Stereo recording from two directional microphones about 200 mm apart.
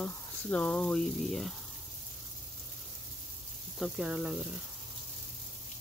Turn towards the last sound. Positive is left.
turn(degrees=-5)  # may be behind; listen again after turning